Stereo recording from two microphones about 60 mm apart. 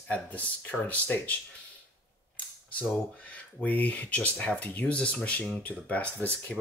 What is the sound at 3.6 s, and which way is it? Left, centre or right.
Speech, left.